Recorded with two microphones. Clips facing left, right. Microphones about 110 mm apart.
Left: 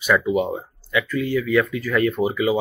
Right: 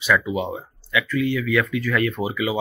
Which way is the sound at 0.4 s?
40° left (ahead or behind).